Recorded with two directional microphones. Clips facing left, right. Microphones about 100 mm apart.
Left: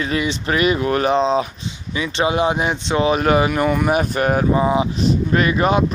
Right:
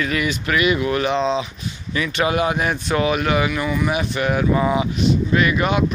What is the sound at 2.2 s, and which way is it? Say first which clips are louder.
Speech: left 2 dB; 25° left (ahead or behind).